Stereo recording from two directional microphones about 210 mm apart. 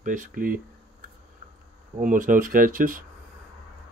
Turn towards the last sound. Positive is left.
turn(degrees=-40)  # may be behind; listen again after turning